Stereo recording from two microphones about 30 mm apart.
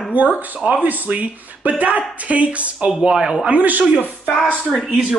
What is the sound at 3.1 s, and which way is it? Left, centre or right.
Speech, right.